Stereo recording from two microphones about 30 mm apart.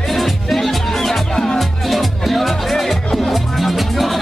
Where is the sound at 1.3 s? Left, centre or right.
Centre.